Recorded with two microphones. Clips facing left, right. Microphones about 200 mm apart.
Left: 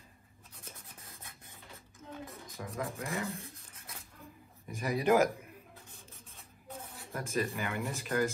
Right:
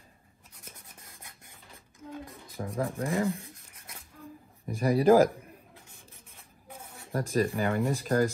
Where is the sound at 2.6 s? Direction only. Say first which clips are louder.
Right 7 dB; 30° right (ahead or behind).